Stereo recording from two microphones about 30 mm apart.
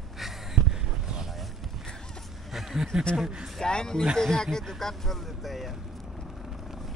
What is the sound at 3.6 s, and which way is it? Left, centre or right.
Speech, left.